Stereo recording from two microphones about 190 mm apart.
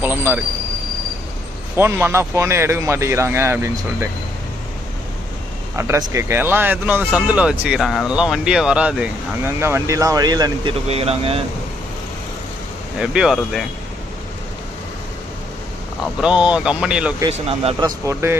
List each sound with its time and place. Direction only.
0.0 s speech: 10° right (ahead or behind)
1.8 s speech: 10° right (ahead or behind)
5.8 s speech: 15° right (ahead or behind); by 11.4 s 30° right (ahead or behind)
13.0 s speech: 5° right (ahead or behind)
16.2 s speech: 5° right (ahead or behind)
17.3 s speech: 30° right (ahead or behind)
17.8 s speech: 15° right (ahead or behind)